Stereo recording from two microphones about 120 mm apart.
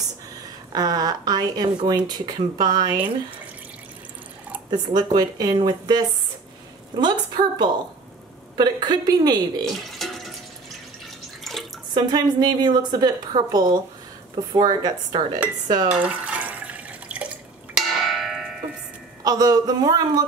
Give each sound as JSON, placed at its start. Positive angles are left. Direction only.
{"t": 0.7, "sound": "speech", "side_deg": -35}
{"t": 4.6, "sound": "speech", "side_deg": -35}
{"t": 9.8, "sound": "a sound", "side_deg": 0}
{"t": 11.5, "sound": "bathtub", "side_deg": 0}
{"t": 11.9, "sound": "speech", "side_deg": -35}
{"t": 15.9, "sound": "water", "side_deg": -10}
{"t": 17.7, "sound": "a sound", "side_deg": 0}
{"t": 19.2, "sound": "speech", "side_deg": -30}